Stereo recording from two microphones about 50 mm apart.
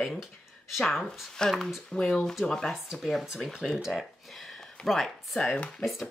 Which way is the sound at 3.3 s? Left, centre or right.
Centre.